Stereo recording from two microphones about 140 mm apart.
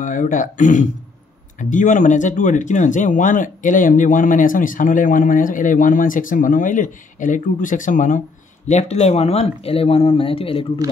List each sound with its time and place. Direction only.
0.0 s speech: 65° left (ahead or behind)
8.6 s speech: 55° left (ahead or behind)